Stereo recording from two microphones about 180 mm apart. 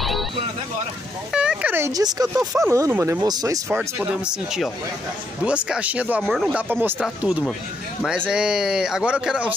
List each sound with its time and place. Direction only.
1.3 s speech: 5° right (ahead or behind)
4.1 s speech: 5° right (ahead or behind)
6.7 s speech: 10° right (ahead or behind)